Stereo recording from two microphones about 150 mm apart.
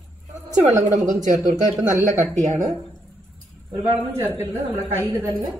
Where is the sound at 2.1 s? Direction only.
55° right (ahead or behind).